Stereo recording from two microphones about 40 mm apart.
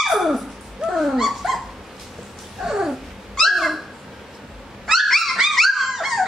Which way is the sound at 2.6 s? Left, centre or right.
Centre.